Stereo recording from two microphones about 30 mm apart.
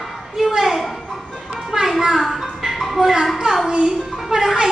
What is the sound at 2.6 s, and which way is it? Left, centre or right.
Music, centre.